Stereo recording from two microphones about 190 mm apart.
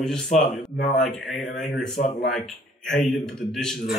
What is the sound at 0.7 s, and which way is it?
Speech, 65° left (ahead or behind).